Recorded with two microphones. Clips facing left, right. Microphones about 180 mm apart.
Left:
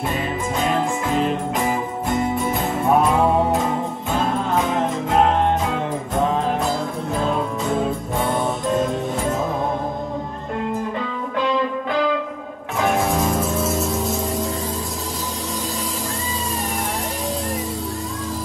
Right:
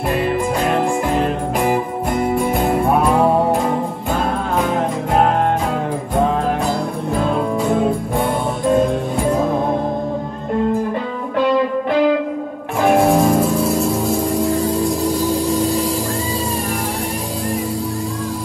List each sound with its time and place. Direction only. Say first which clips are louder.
0.1 s music: right 6 dB; centre (ahead or behind)
4.6 s music: right 4 dB; centre (ahead or behind)
12.9 s music: right 9 dB; 50° right (ahead or behind)
13.4 s music: right 5 dB; centre (ahead or behind)